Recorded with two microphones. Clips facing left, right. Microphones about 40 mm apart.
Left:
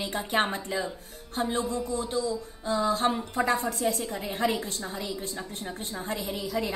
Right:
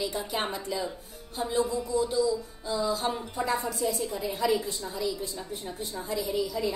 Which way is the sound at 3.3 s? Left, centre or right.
Left.